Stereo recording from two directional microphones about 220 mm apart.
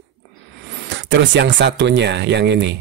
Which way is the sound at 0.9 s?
55° right (ahead or behind).